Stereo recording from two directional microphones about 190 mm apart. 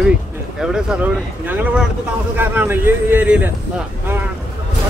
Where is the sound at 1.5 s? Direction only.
10° right (ahead or behind).